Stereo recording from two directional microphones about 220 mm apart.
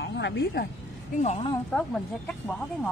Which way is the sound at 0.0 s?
55° left (ahead or behind).